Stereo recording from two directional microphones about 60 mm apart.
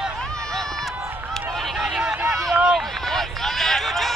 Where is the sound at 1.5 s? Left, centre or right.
Centre.